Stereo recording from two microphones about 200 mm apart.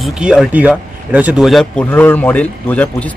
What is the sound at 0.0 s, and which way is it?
A man's voice, 5° right (ahead or behind).